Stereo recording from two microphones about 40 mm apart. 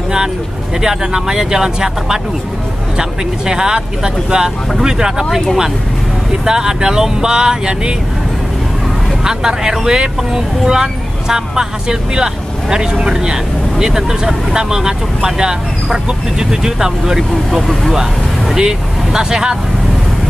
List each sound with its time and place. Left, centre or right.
0.8 s speech: centre
6.4 s speech: centre
9.2 s speech: centre
17.5 s speech: centre
18.6 s speech: centre